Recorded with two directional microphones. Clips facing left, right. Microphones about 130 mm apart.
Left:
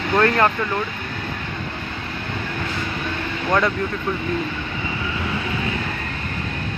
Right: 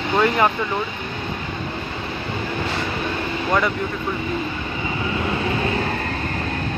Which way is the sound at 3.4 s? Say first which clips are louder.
Left 1 dB; centre (ahead or behind).